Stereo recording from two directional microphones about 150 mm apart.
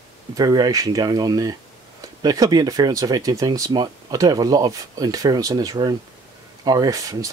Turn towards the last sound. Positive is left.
turn(degrees=-20)  # may be behind; listen again after turning